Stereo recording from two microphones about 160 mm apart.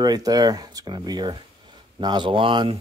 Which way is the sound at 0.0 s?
25° right (ahead or behind).